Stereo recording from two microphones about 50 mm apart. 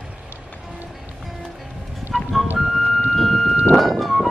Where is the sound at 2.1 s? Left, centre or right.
Centre.